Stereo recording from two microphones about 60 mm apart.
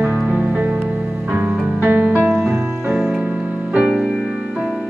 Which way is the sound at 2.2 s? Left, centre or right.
Centre.